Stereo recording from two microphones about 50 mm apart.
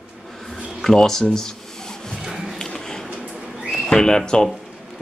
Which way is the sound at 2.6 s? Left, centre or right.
Centre.